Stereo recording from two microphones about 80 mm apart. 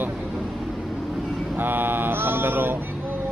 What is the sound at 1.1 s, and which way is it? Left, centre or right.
Vehicle, centre.